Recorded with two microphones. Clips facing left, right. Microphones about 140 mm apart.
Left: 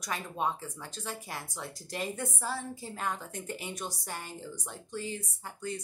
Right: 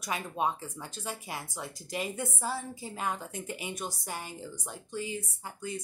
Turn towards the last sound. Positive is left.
turn(degrees=-5)  # may be behind; listen again after turning